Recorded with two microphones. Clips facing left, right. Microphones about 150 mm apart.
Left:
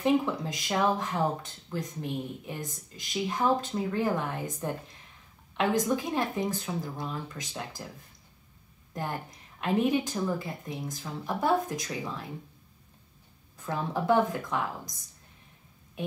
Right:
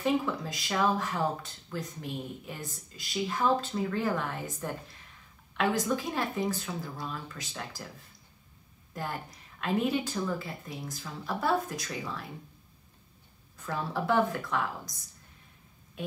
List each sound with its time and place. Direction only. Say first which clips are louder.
0.0 s speech: left 3 dB; 15° left (ahead or behind)
8.9 s speech: left 2 dB; 20° left (ahead or behind)
13.6 s speech: left 2 dB; 20° left (ahead or behind)